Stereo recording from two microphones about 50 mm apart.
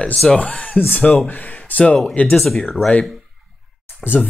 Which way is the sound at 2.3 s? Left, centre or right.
Centre.